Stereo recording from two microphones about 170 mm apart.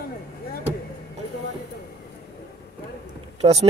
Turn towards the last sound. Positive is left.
turn(degrees=-40)  # may be behind; listen again after turning